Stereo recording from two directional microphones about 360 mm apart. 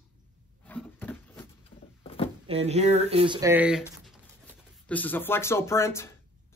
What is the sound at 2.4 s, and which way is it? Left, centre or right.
Speech, centre.